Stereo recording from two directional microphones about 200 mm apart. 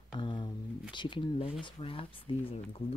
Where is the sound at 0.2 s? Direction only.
25° left (ahead or behind).